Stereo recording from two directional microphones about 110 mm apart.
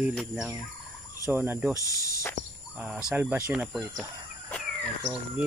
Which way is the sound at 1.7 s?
30° left (ahead or behind).